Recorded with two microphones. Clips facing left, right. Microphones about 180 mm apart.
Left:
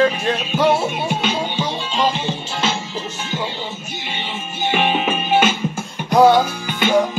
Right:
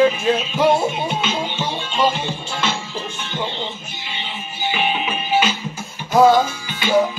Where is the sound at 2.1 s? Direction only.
35° left (ahead or behind).